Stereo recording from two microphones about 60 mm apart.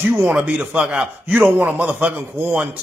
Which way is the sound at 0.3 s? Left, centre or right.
Right.